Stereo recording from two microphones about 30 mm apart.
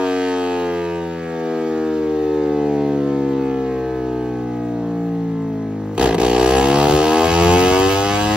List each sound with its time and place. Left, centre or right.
2.2 s siren: right
5.9 s vehicle: right